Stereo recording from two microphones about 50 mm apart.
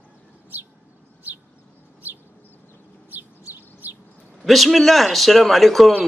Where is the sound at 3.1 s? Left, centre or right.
Right.